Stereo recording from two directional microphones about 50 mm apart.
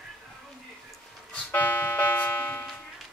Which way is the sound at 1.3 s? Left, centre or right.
Left.